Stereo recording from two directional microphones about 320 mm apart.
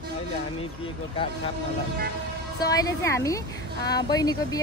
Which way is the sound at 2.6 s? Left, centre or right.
Centre.